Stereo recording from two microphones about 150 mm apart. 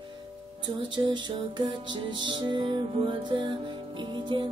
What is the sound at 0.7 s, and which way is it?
Music, 35° right (ahead or behind).